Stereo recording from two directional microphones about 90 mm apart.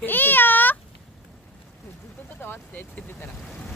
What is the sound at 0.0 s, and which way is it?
Meow, 20° left (ahead or behind).